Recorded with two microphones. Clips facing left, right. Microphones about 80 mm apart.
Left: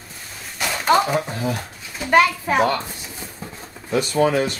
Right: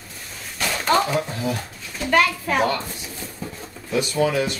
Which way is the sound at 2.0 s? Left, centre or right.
Left.